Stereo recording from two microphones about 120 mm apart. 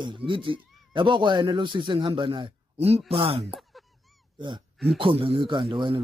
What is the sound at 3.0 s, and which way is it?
Speech, 55° right (ahead or behind).